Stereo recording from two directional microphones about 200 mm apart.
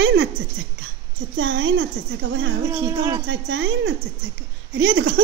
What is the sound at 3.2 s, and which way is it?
Speech, 65° right (ahead or behind).